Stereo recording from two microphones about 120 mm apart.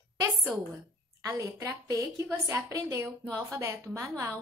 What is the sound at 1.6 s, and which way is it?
A woman's voice, 25° right (ahead or behind).